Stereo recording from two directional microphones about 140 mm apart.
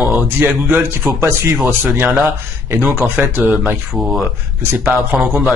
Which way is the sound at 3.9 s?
Centre (ahead or behind).